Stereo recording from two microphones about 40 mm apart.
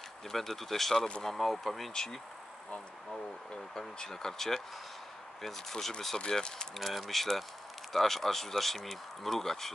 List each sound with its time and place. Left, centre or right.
0.3 s speech: centre
3.7 s speech: centre